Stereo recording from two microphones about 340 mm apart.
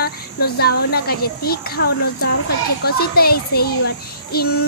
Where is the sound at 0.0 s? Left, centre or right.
Left.